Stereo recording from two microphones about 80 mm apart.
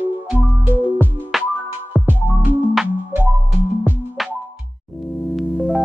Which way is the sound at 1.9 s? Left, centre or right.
Right.